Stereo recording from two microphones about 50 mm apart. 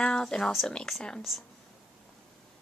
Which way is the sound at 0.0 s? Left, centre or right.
Centre.